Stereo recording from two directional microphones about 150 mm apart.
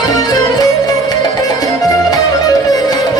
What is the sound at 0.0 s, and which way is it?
Music, 25° left (ahead or behind).